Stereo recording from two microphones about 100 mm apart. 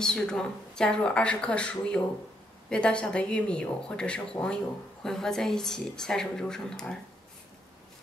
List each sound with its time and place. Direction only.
0.0 s a woman's voice: 5° left (ahead or behind)